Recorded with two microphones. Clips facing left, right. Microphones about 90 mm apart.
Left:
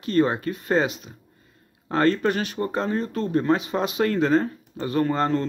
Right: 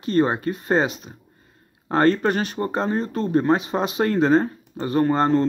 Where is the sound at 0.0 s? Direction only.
30° right (ahead or behind).